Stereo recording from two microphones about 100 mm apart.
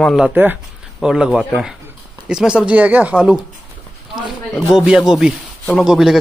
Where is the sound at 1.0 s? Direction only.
5° right (ahead or behind).